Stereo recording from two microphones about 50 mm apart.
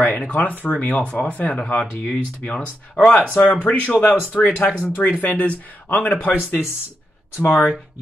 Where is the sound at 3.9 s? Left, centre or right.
Left.